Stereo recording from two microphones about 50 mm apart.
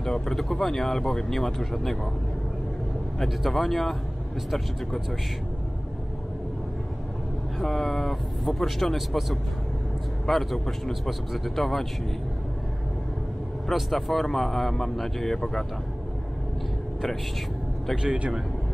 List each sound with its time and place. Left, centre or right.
0.0 s speech: centre
3.2 s speech: centre
7.6 s speech: centre
13.7 s speech: centre
17.9 s a man's voice: right